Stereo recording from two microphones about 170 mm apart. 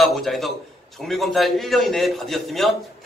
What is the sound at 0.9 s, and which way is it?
A man's voice, centre (ahead or behind).